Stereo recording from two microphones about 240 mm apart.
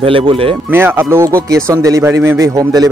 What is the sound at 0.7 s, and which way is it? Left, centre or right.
Speech, centre.